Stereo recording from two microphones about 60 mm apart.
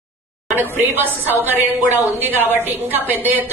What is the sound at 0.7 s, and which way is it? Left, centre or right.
A woman's voice, right.